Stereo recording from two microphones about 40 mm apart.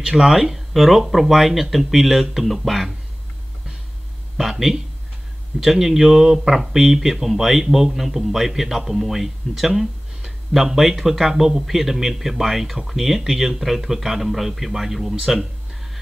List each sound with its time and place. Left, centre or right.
0.0 s speech: centre
4.4 s speech: centre